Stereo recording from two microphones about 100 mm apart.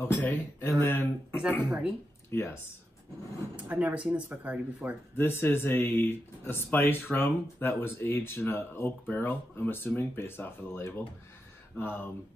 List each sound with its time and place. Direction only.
0.0 s speech: 20° left (ahead or behind)
3.5 s speech: 15° right (ahead or behind)
5.1 s speech: 20° left (ahead or behind)